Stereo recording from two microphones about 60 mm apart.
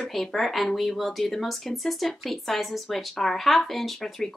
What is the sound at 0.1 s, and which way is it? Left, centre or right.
Speech, centre.